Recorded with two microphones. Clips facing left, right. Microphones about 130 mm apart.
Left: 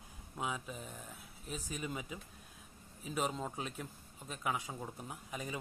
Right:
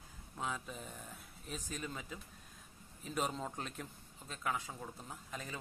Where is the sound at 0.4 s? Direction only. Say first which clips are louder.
Left 1 dB; 5° left (ahead or behind).